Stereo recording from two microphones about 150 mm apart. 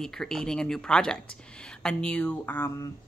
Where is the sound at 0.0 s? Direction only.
Centre (ahead or behind).